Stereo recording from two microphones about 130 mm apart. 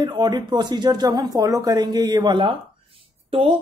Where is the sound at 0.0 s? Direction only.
35° right (ahead or behind).